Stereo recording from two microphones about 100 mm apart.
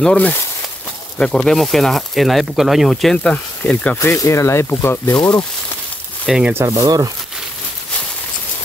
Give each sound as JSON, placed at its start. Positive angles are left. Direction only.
{"t": 0.0, "sound": "speech", "side_deg": 10}
{"t": 4.0, "sound": "speech", "side_deg": 30}
{"t": 6.3, "sound": "speech", "side_deg": 0}
{"t": 6.6, "sound": "speech", "side_deg": -35}